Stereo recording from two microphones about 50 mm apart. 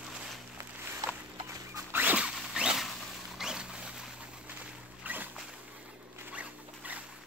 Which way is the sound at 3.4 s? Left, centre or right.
Centre.